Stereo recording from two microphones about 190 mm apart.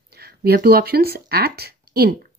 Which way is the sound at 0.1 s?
55° right (ahead or behind).